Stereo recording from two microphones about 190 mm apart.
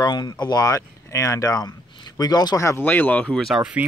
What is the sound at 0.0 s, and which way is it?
Speech, 20° left (ahead or behind).